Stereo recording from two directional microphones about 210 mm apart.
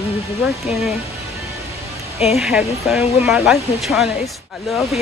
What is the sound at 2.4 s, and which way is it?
Speech, centre (ahead or behind).